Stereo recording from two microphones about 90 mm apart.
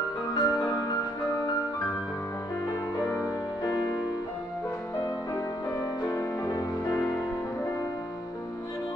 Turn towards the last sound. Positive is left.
turn(degrees=25)  # may be behind; listen again after turning